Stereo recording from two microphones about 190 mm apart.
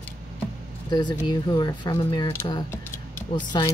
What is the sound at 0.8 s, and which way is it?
Speech, 25° left (ahead or behind).